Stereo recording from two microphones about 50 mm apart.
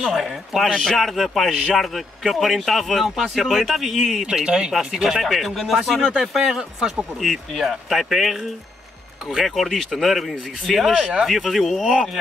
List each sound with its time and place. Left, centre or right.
0.1 s speech: centre
4.3 s speech: centre
5.2 s speech: centre
9.6 s speech: centre